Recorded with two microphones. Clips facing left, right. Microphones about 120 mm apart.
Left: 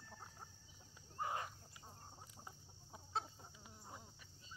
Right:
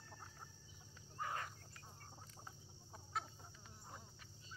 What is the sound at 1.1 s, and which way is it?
Cricket, 20° left (ahead or behind).